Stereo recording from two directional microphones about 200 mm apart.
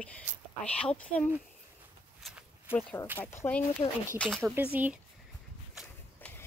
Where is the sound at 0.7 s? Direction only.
5° left (ahead or behind).